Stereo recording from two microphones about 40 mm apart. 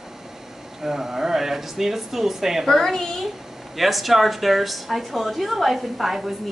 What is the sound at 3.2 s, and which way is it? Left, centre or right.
Speech, centre.